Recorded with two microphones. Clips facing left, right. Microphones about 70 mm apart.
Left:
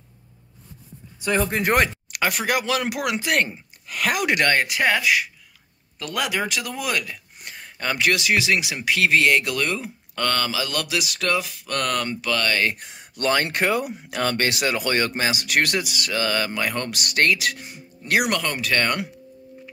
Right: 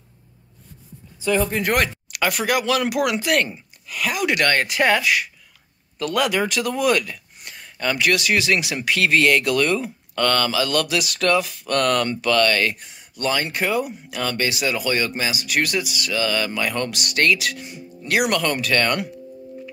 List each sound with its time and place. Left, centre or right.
1.3 s speech: left
1.7 s speech: left
3.8 s a sound: left
4.4 s speech: centre
7.4 s speech: left
12.7 s speech: left
15.4 s speech: left
18.4 s speech: centre